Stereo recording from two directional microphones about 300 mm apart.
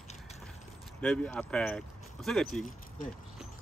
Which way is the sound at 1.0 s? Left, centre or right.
Centre.